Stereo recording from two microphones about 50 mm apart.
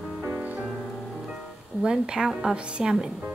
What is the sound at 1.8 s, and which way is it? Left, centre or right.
A woman's voice, centre.